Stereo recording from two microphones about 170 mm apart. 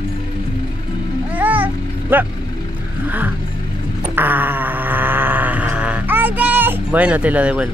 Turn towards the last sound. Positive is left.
turn(degrees=-5)  # may be behind; listen again after turning